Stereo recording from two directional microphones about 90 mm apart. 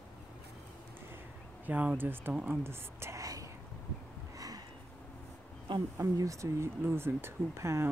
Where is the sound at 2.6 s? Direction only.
30° right (ahead or behind).